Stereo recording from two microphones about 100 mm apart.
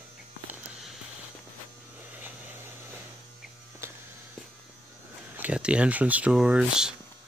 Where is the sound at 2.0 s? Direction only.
15° right (ahead or behind).